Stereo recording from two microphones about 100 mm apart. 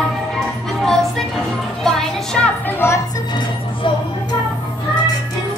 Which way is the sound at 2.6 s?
25° left (ahead or behind).